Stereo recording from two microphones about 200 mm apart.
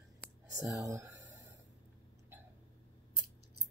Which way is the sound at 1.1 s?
65° right (ahead or behind).